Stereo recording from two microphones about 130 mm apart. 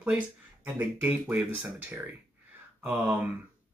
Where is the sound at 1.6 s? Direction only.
15° right (ahead or behind).